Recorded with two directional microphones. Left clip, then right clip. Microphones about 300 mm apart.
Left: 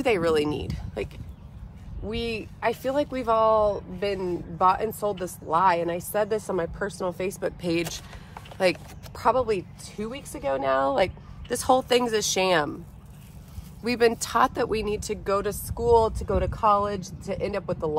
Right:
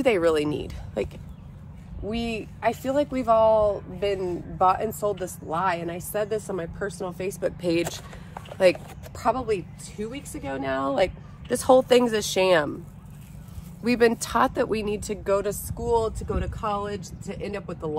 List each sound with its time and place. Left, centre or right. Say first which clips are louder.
0.0 s a woman's voice: right 1 dB; centre
13.8 s speech: right 1 dB; centre